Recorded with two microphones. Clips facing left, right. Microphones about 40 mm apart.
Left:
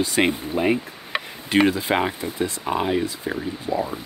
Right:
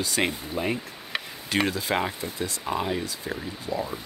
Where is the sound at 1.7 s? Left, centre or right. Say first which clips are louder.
Left 5 dB; left.